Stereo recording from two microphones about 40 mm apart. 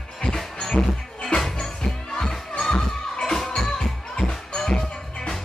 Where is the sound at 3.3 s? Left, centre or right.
Centre.